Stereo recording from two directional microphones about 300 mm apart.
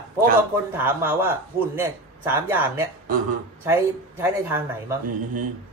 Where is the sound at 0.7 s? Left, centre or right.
Centre.